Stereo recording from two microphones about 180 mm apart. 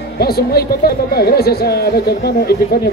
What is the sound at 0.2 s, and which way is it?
Speech, 60° left (ahead or behind).